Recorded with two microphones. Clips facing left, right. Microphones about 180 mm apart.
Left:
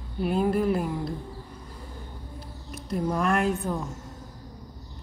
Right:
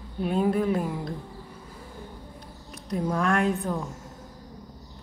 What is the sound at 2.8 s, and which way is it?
Speech, centre (ahead or behind).